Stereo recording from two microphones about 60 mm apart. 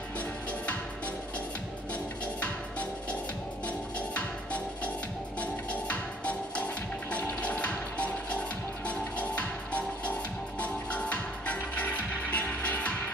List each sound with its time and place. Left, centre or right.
2.4 s music: left